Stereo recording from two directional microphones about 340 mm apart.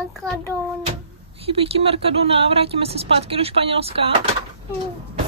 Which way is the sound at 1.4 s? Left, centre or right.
Centre.